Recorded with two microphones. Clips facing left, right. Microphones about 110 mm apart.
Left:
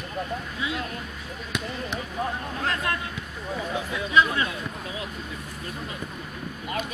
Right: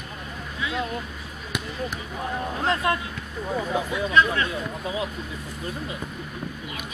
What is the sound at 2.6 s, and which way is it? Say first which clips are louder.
Vehicle: right 4 dB; 25° right (ahead or behind).